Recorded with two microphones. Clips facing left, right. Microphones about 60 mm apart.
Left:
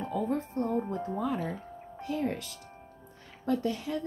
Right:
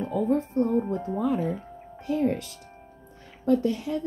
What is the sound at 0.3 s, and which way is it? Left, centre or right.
Speech, right.